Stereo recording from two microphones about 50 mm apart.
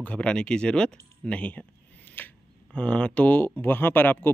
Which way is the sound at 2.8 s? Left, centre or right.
Left.